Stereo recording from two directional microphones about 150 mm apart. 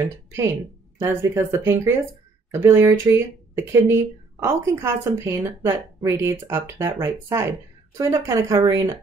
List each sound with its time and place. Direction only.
0.0 s speech: 20° right (ahead or behind)